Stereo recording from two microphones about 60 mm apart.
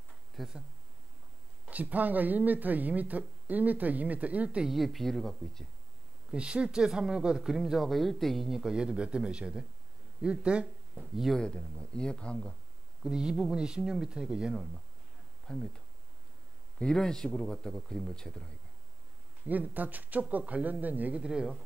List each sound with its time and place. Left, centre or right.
0.4 s speech: centre
1.7 s speech: right
4.6 s speech: centre
6.3 s speech: centre
11.0 s speech: centre
11.3 s speech: centre
13.0 s speech: centre
15.4 s speech: centre
19.4 s speech: right
21.2 s speech: centre